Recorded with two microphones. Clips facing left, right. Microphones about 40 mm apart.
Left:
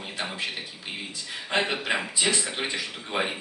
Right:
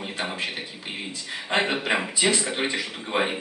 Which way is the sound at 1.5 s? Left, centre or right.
Right.